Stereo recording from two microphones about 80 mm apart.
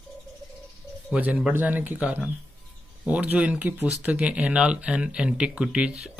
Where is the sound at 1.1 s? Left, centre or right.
Centre.